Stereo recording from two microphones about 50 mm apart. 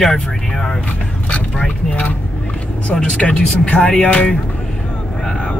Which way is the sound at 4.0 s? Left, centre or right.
Left.